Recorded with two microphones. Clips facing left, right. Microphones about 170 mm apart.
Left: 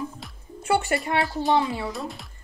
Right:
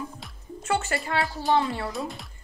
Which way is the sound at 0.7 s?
15° left (ahead or behind).